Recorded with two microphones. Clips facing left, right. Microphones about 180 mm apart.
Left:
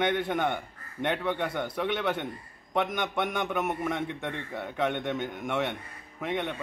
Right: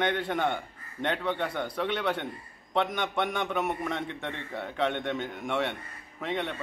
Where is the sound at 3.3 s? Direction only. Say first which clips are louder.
Even; 5° left (ahead or behind).